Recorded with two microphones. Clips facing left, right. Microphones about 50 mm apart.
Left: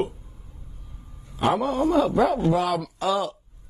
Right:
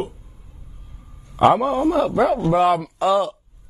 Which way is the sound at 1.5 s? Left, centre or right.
Right.